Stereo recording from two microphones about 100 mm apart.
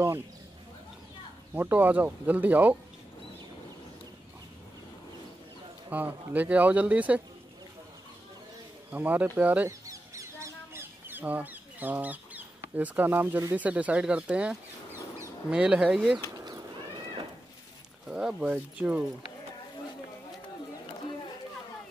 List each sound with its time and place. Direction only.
1.5 s speech: 15° right (ahead or behind)
5.9 s speech: 15° right (ahead or behind)
8.9 s speech: 15° right (ahead or behind)
9.7 s a sound: 30° right (ahead or behind)
13.6 s speech: 15° right (ahead or behind)
18.0 s speech: 5° right (ahead or behind)